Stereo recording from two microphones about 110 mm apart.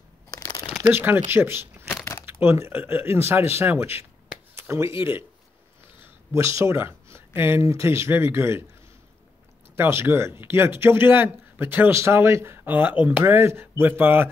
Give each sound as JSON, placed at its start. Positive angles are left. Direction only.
{"t": 0.3, "sound": "crumpling", "side_deg": 35}
{"t": 0.8, "sound": "speech", "side_deg": -20}
{"t": 4.6, "sound": "a sound", "side_deg": -25}
{"t": 6.3, "sound": "speech", "side_deg": -25}
{"t": 9.8, "sound": "speech", "side_deg": -20}